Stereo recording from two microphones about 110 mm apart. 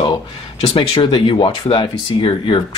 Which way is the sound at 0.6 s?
55° left (ahead or behind).